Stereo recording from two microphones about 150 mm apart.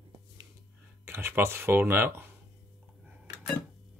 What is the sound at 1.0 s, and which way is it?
Speech, 15° right (ahead or behind).